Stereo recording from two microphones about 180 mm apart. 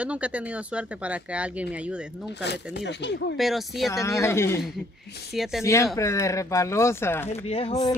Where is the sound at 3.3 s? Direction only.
Centre (ahead or behind).